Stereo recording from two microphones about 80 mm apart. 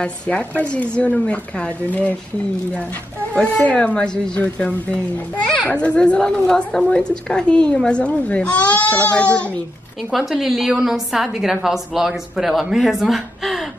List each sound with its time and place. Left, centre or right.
0.0 s a woman's voice: centre
3.5 s a woman's voice: centre
10.1 s speech: centre